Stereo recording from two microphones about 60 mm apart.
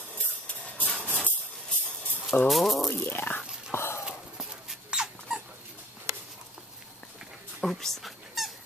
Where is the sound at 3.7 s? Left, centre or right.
Left.